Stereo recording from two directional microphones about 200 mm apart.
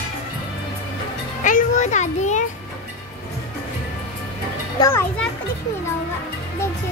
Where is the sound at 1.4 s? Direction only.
40° left (ahead or behind).